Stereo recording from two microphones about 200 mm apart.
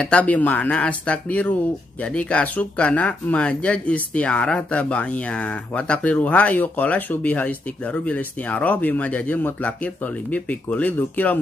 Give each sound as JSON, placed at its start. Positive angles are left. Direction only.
{"t": 0.0, "sound": "speech", "side_deg": 5}